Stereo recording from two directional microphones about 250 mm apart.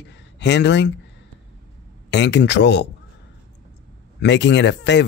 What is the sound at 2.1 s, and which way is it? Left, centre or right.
Speech, left.